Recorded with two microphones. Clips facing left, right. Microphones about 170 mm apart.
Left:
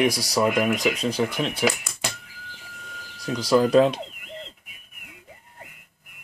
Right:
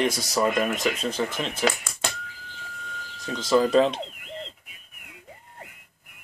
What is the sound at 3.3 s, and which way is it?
Speech, 5° left (ahead or behind).